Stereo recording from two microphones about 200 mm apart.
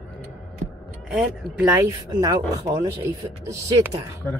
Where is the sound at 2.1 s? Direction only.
20° right (ahead or behind).